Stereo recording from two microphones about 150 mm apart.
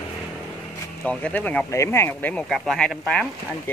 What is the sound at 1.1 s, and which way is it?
Speech, 10° left (ahead or behind).